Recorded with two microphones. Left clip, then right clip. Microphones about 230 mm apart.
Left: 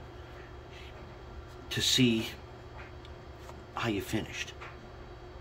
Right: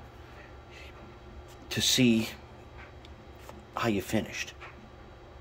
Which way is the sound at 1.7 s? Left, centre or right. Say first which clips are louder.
Right 2 dB; right.